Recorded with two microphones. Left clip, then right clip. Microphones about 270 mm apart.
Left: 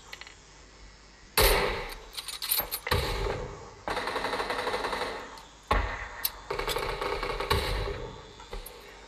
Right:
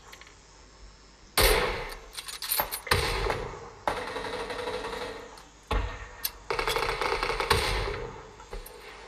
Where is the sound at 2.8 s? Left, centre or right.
Centre.